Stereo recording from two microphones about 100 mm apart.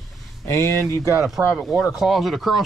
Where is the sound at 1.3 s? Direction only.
Centre (ahead or behind).